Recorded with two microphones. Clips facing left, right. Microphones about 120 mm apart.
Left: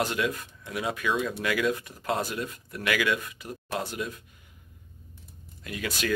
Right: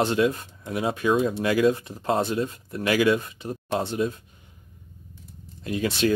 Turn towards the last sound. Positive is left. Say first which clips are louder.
# right 8 dB
turn(degrees=-30)  # may be behind; listen again after turning